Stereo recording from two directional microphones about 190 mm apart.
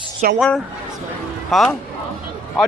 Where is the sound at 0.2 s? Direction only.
45° right (ahead or behind).